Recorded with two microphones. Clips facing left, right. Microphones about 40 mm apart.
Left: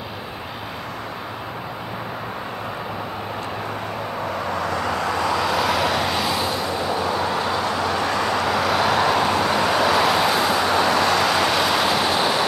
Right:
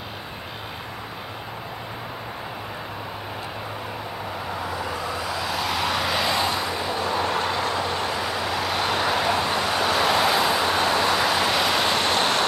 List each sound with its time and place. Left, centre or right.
4.6 s vehicle: left
5.3 s vehicle: centre
8.4 s vehicle: centre